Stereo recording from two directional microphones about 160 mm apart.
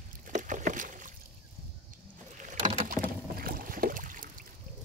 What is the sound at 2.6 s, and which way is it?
Rowboat, 35° right (ahead or behind).